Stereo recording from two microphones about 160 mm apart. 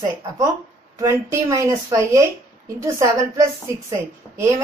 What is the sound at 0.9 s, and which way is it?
A woman's voice, 20° right (ahead or behind).